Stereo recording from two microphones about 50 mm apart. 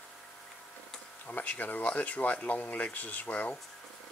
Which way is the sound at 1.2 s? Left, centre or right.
Left.